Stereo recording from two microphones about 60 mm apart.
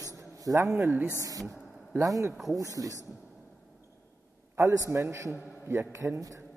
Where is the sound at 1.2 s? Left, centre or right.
Right.